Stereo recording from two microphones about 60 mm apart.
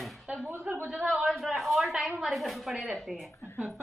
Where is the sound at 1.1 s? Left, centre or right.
Centre.